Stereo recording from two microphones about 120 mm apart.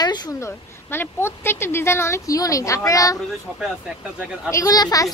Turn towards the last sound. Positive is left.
turn(degrees=30)  # may be behind; listen again after turning